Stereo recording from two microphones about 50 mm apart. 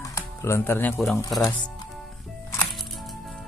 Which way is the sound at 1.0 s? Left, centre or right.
Centre.